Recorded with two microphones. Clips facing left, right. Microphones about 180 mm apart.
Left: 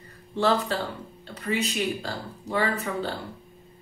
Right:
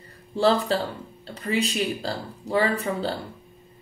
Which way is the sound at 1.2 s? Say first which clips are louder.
Right 2 dB; 30° right (ahead or behind).